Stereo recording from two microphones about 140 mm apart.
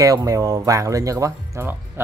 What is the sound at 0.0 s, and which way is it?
Speech, 25° right (ahead or behind).